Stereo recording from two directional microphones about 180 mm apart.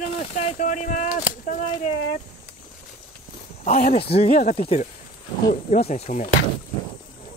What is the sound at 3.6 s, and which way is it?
Speech, 40° left (ahead or behind).